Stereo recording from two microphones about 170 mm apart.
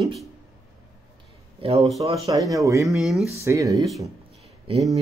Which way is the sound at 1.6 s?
35° right (ahead or behind).